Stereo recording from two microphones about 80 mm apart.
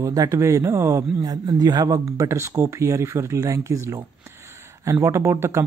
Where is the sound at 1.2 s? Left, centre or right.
Right.